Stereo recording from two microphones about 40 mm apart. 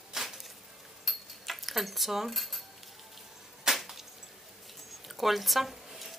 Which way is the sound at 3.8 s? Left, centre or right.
Centre.